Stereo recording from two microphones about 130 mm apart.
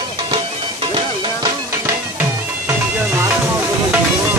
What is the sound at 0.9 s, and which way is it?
Music, 35° right (ahead or behind).